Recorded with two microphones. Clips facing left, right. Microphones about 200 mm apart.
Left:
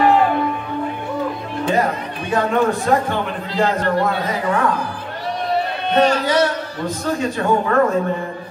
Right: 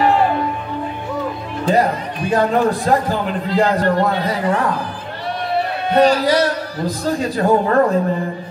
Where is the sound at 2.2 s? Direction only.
35° right (ahead or behind).